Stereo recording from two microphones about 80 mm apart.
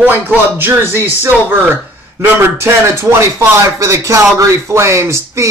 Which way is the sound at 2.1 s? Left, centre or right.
Right.